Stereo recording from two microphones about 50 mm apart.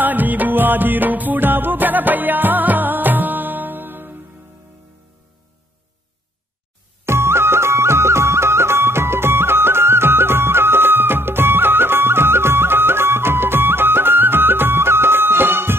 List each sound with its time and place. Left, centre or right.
0.0 s music: right
7.1 s music: right